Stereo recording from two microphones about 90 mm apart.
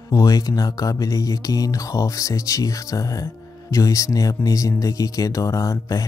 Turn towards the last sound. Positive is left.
turn(degrees=35)  # may be behind; listen again after turning